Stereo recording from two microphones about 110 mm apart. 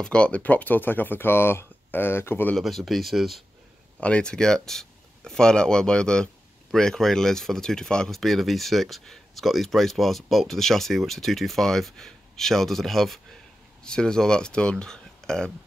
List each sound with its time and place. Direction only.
0.0 s speech: 10° left (ahead or behind)
2.5 s speech: centre (ahead or behind)
4.0 s speech: 10° left (ahead or behind)